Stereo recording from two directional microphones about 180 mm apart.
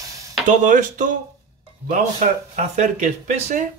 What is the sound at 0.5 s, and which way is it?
Speech, 45° right (ahead or behind).